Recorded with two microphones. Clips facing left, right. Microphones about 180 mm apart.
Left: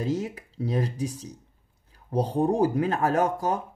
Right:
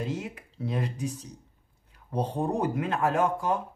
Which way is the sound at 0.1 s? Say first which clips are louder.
Left 6 dB; 40° left (ahead or behind).